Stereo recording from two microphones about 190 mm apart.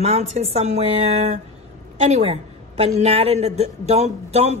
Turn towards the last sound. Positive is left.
turn(degrees=-35)  # may be behind; listen again after turning